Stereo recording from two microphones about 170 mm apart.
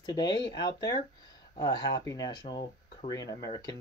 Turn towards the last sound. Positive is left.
turn(degrees=20)  # may be behind; listen again after turning